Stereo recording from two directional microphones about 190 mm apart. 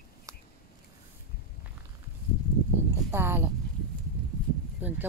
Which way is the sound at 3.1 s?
10° right (ahead or behind).